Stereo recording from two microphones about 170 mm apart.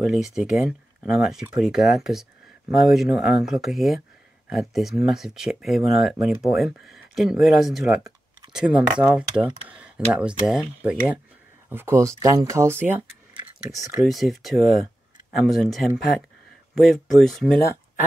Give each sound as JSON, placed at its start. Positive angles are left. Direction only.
{"t": 0.0, "sound": "speech", "side_deg": 0}
{"t": 14.0, "sound": "speech", "side_deg": 0}